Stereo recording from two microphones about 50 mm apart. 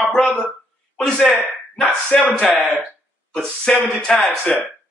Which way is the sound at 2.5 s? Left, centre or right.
Centre.